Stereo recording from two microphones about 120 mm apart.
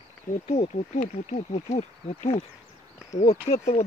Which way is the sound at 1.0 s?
75° left (ahead or behind).